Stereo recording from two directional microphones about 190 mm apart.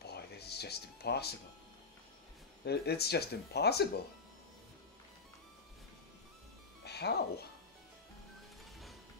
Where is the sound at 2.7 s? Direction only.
60° left (ahead or behind).